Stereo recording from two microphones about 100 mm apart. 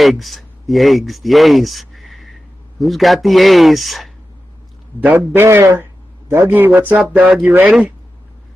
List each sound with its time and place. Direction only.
0.0 s speech: centre (ahead or behind)
5.0 s a man's voice: 20° right (ahead or behind)